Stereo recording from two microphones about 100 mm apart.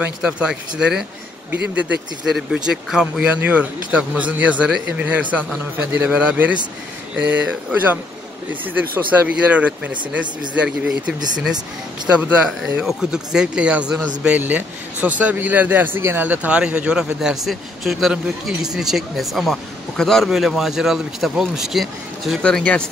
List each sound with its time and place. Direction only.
0.0 s a man's voice: 10° right (ahead or behind)
12.2 s a man's voice: 10° right (ahead or behind)
22.4 s speech: 10° left (ahead or behind)